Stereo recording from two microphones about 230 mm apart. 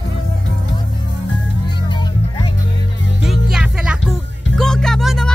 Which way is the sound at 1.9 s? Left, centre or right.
Centre.